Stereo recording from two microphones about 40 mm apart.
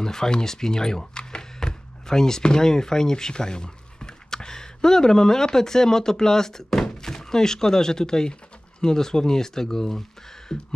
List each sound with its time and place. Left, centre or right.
0.0 s speech: centre